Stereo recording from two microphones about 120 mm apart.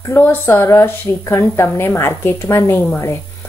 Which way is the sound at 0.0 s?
20° left (ahead or behind).